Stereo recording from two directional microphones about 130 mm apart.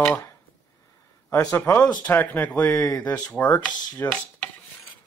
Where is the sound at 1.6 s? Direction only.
15° left (ahead or behind).